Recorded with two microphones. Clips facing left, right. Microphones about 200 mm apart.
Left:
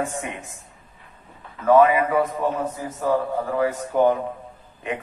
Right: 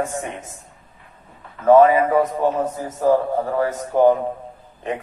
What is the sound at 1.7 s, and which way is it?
Speech, 40° right (ahead or behind).